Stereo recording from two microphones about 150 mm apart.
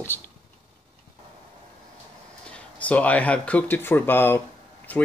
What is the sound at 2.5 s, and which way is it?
Speech, 10° left (ahead or behind).